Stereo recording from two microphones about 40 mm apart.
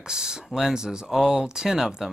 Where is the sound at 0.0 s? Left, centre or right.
Centre.